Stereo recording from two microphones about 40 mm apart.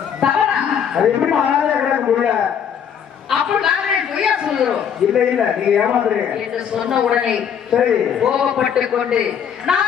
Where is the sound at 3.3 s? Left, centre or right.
Centre.